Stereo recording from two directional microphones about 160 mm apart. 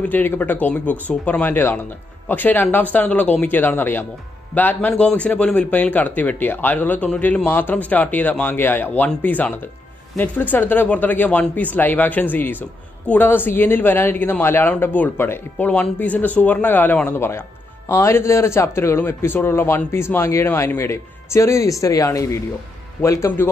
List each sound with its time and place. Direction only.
0.0 s a man's voice: 10° left (ahead or behind)